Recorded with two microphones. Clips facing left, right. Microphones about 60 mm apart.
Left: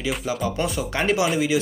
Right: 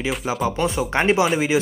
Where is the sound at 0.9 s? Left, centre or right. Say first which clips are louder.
Right 4 dB; right.